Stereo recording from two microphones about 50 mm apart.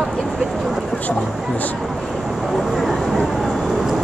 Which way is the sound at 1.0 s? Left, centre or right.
Left.